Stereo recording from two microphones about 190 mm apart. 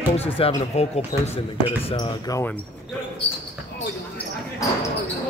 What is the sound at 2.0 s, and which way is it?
Speech, 20° left (ahead or behind).